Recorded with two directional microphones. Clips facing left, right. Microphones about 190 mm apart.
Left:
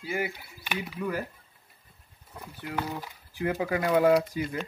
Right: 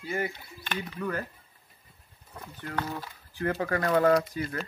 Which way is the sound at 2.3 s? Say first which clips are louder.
Left 1 dB; 10° left (ahead or behind).